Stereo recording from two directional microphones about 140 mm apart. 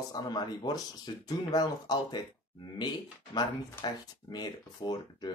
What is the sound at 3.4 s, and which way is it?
Speech, 30° left (ahead or behind).